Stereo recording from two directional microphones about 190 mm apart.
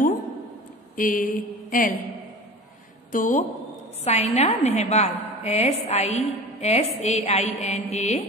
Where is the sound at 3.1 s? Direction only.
45° left (ahead or behind).